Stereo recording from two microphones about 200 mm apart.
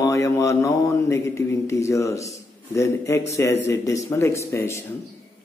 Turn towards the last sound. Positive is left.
turn(degrees=15)  # may be behind; listen again after turning